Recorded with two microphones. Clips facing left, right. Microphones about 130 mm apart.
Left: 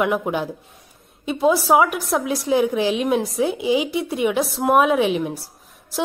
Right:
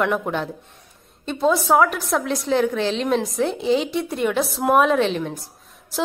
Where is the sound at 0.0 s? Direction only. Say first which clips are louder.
Left 1 dB; 5° left (ahead or behind).